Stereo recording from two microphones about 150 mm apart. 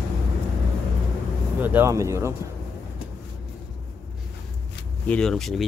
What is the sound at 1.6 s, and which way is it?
Speech, 15° right (ahead or behind).